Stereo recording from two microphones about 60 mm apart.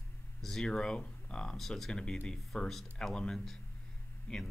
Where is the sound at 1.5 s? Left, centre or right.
Centre.